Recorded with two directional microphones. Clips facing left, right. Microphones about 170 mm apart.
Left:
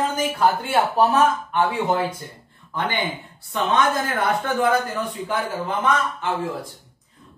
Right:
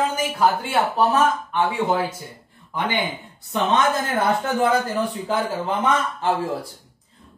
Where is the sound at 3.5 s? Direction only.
25° right (ahead or behind).